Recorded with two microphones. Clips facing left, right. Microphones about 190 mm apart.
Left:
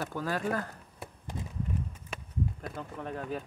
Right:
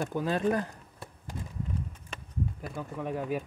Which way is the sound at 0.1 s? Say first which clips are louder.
Right 5 dB; 20° right (ahead or behind).